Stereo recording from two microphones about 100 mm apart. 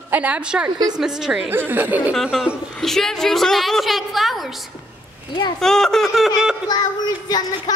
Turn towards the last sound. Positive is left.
turn(degrees=40)  # may be behind; listen again after turning